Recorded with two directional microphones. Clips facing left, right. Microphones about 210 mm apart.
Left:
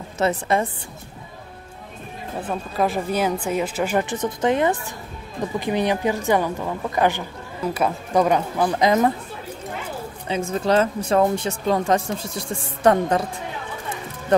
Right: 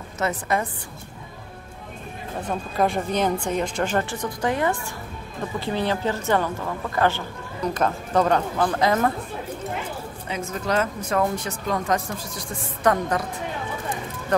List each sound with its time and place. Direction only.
0.2 s speech: 25° left (ahead or behind)
2.4 s a woman's voice: 5° left (ahead or behind)
10.2 s speech: 30° left (ahead or behind)